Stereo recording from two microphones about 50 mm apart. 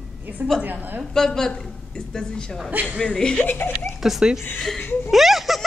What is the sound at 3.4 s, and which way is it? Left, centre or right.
Speech, left.